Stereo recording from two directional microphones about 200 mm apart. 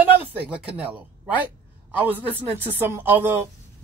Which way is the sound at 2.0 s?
10° right (ahead or behind).